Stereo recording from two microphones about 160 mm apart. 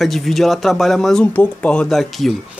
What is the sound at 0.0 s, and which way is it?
Speech, centre (ahead or behind).